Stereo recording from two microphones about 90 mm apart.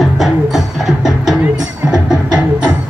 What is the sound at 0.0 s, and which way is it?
Music, centre (ahead or behind).